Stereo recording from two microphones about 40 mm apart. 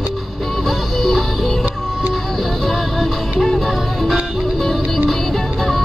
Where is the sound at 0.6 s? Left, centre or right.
Centre.